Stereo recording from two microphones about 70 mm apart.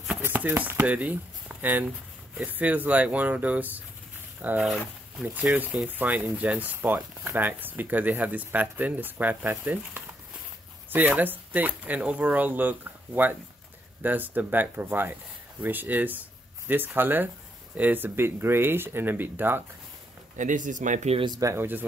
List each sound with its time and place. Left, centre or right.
0.2 s speech: right
21.5 s speech: right